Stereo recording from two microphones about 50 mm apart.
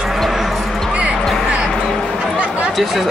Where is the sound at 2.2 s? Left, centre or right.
Right.